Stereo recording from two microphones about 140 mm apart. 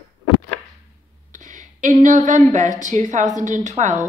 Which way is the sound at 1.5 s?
65° right (ahead or behind).